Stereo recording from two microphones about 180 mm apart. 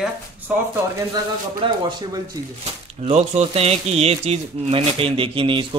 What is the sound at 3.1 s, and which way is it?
Speech, 35° right (ahead or behind).